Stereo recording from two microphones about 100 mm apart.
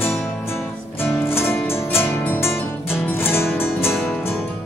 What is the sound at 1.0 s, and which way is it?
Music, 25° left (ahead or behind).